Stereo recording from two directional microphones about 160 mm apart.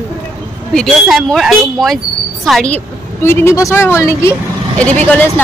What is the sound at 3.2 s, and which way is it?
Speech, 15° left (ahead or behind).